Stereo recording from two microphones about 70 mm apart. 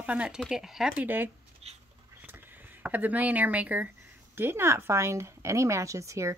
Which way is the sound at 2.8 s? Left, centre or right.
Right.